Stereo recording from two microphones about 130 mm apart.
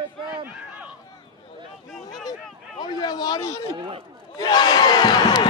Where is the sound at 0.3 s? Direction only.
10° right (ahead or behind).